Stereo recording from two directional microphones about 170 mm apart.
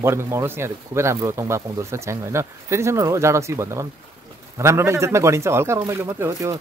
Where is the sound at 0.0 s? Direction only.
15° right (ahead or behind).